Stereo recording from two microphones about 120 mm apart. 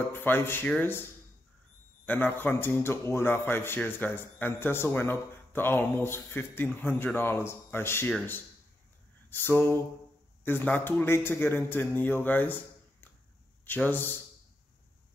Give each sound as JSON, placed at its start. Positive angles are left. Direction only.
{"t": 0.1, "sound": "a man's voice", "side_deg": 15}
{"t": 2.0, "sound": "a man's voice", "side_deg": 15}
{"t": 9.3, "sound": "a man's voice", "side_deg": 15}